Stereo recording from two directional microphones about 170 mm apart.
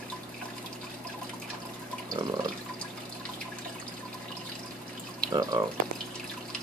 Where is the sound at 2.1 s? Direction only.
25° right (ahead or behind).